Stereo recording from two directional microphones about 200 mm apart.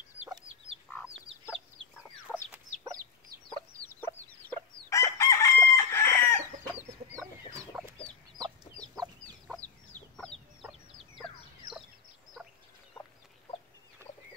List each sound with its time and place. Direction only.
2.0 s chicken: 5° left (ahead or behind)
3.8 s chicken: 10° left (ahead or behind)
6.7 s chicken: 10° right (ahead or behind)
9.2 s chicken: 5° left (ahead or behind)
13.0 s chicken: 15° left (ahead or behind)